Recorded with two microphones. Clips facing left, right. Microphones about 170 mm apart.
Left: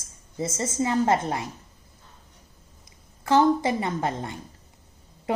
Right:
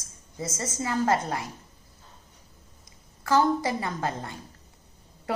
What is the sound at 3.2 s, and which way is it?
A woman's voice, 25° left (ahead or behind).